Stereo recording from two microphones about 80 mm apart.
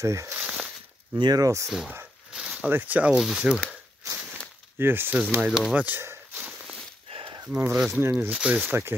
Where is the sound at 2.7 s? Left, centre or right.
Right.